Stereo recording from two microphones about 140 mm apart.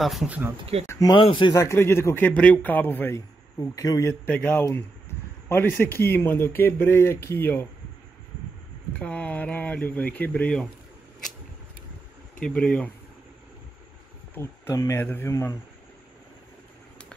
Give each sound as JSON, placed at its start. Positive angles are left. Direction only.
{"t": 0.0, "sound": "speech", "side_deg": 0}
{"t": 0.3, "sound": "speech", "side_deg": -15}
{"t": 0.8, "sound": "speech", "side_deg": 25}
{"t": 1.1, "sound": "speech", "side_deg": 35}
{"t": 1.6, "sound": "speech", "side_deg": 20}
{"t": 4.3, "sound": "speech", "side_deg": 15}
{"t": 9.0, "sound": "speech", "side_deg": 10}
{"t": 12.4, "sound": "speech", "side_deg": 10}
{"t": 14.3, "sound": "speech", "side_deg": 20}